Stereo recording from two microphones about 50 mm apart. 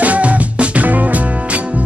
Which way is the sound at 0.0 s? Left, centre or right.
Right.